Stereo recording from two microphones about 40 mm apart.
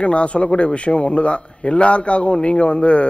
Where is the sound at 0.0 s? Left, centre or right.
Left.